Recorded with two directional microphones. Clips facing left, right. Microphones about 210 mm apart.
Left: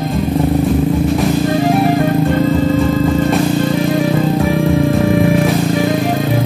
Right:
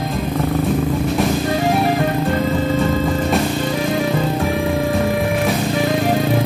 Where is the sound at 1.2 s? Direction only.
Centre (ahead or behind).